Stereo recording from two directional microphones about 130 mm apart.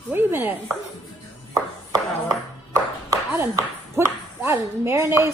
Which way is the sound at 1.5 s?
20° right (ahead or behind).